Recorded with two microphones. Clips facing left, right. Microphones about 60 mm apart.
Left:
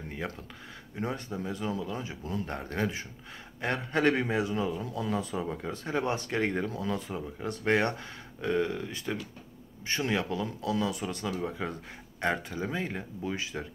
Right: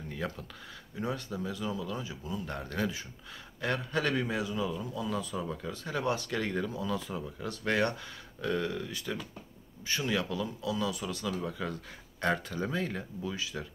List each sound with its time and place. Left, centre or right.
0.9 s speech: left
2.0 s speech: left
13.3 s speech: left